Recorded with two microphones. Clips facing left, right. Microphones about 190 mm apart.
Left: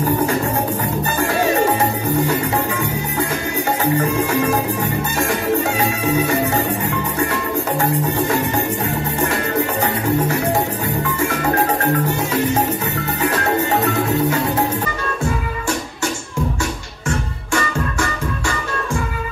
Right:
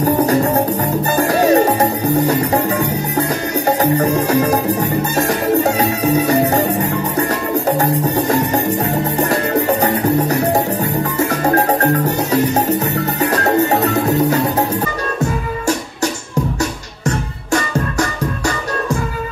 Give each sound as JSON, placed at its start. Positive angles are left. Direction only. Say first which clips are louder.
{"t": 1.1, "sound": "music", "louder": "right 6 dB", "side_deg": -40}
{"t": 7.8, "sound": "music", "louder": "right 3 dB", "side_deg": -40}